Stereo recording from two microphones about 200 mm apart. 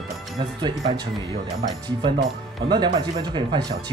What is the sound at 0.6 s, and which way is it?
Speech, 20° right (ahead or behind).